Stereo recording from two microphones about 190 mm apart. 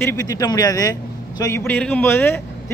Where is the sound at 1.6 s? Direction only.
10° left (ahead or behind).